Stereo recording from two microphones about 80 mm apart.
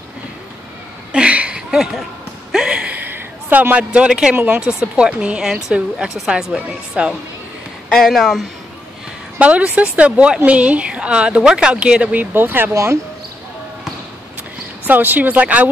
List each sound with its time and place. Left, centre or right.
1.1 s chuckle: centre
2.5 s a woman's voice: centre
7.9 s speech: centre
9.4 s a woman's voice: centre
12.7 s speech: right
14.9 s speech: right